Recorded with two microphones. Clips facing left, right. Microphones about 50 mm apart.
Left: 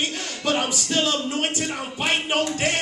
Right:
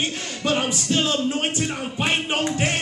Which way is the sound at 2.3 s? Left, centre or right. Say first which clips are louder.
Even; right.